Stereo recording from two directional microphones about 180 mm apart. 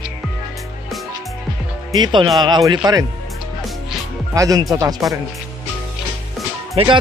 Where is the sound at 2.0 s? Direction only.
25° right (ahead or behind).